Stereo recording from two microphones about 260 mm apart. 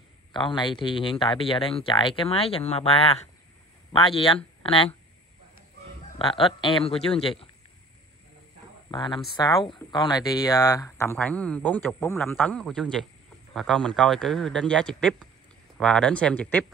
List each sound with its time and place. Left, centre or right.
0.3 s speech: centre
4.6 s speech: left
6.1 s speech: centre
8.9 s a man's voice: centre